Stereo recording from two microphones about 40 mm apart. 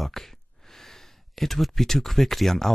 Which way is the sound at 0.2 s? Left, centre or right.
Centre.